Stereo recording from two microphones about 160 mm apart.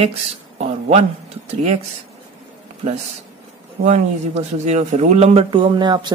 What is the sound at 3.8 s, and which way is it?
A man's voice, 45° right (ahead or behind).